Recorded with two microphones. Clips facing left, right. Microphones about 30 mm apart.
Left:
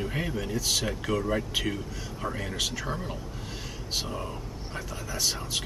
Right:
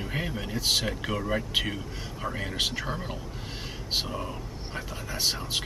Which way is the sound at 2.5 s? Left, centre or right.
Right.